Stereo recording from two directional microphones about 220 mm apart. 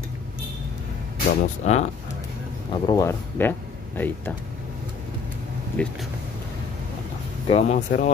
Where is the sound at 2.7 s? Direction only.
15° left (ahead or behind).